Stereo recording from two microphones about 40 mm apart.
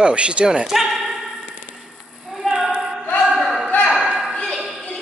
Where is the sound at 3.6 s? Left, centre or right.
Left.